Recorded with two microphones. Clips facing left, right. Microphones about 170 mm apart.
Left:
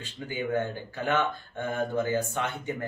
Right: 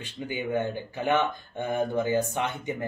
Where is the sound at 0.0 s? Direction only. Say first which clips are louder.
Right 1 dB; 15° right (ahead or behind).